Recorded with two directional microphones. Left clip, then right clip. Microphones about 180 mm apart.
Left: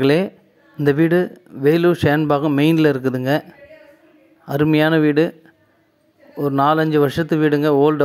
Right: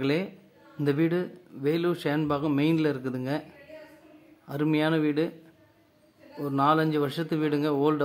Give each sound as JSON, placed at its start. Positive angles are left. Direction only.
{"t": 0.0, "sound": "speech", "side_deg": 40}
{"t": 4.5, "sound": "speech", "side_deg": 40}
{"t": 6.3, "sound": "speech", "side_deg": 40}